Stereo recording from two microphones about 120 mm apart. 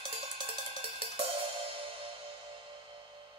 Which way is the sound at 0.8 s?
50° right (ahead or behind).